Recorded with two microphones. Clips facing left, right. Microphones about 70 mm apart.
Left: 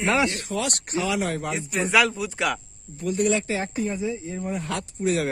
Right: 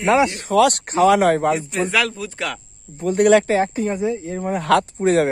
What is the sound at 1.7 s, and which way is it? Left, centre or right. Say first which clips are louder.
Speech: right 1 dB; centre.